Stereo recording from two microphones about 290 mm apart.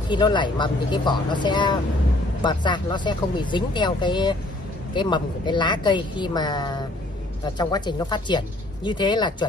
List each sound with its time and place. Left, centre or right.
0.1 s a woman's voice: centre